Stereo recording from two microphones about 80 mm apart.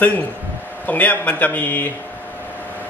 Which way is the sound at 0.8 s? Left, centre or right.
Centre.